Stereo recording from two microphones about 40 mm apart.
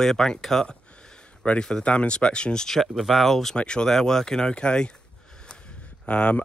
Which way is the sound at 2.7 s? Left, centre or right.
Centre.